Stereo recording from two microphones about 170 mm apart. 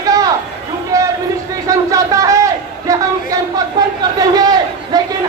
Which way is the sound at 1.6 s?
20° right (ahead or behind).